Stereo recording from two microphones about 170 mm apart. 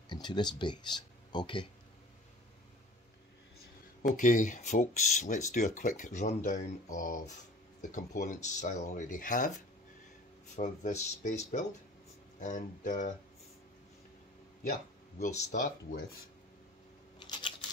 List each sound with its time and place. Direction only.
0.1 s speech: 25° left (ahead or behind)
4.1 s speech: 50° left (ahead or behind)
10.5 s speech: 45° left (ahead or behind)
14.6 s a sound: 50° left (ahead or behind)
15.5 s speech: 55° left (ahead or behind)
17.2 s a sound: 30° left (ahead or behind)